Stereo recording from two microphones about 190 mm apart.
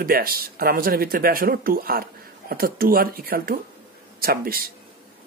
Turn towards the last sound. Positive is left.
turn(degrees=-50)  # may be behind; listen again after turning